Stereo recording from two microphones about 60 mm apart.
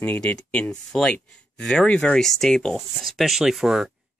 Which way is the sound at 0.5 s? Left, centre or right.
Centre.